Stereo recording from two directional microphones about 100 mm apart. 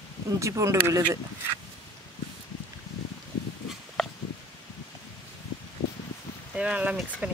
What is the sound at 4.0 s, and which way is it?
Pig, centre (ahead or behind).